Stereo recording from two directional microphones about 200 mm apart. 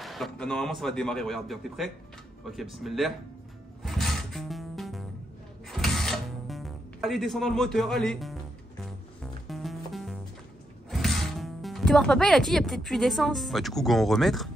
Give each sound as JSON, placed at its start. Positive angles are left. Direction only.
{"t": 0.0, "sound": "a man's voice", "side_deg": 0}
{"t": 3.8, "sound": "music", "side_deg": 0}
{"t": 10.9, "sound": "speech", "side_deg": 0}